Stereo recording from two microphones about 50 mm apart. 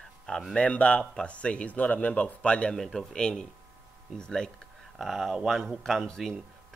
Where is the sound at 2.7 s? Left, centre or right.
Centre.